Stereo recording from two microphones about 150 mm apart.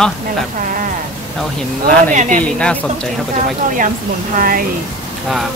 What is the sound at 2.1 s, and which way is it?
Speech, 55° right (ahead or behind).